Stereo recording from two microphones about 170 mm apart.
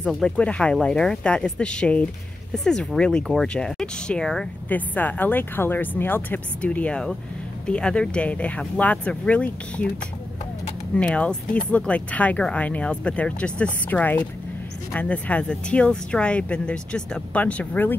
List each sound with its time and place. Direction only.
0.0 s speech: 5° left (ahead or behind)
11.0 s speech: 5° left (ahead or behind)